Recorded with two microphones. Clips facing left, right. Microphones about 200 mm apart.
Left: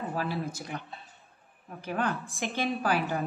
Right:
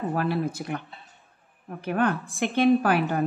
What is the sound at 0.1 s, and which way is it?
A woman's voice, 60° right (ahead or behind).